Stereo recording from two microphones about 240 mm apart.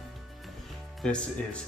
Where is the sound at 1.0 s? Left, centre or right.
Centre.